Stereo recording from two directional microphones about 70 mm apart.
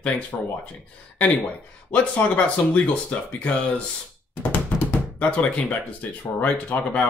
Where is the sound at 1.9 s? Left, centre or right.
Centre.